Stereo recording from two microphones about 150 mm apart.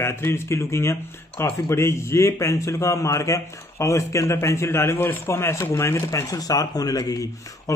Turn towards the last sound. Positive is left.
turn(degrees=25)  # may be behind; listen again after turning